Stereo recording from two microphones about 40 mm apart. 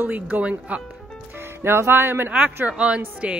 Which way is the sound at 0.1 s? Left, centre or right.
Right.